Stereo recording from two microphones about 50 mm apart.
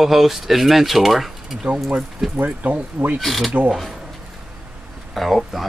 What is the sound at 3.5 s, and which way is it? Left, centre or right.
Speech, right.